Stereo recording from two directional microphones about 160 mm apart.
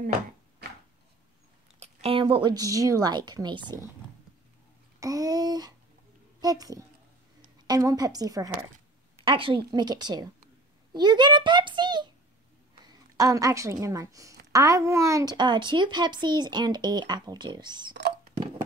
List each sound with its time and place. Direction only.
1.8 s a woman's voice: 35° right (ahead or behind)
5.0 s a sound: 20° right (ahead or behind)
6.4 s a child's voice: 25° right (ahead or behind)